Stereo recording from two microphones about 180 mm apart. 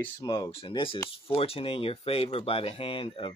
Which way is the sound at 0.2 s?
25° left (ahead or behind).